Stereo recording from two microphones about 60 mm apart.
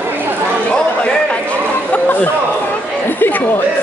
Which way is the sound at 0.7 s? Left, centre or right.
Left.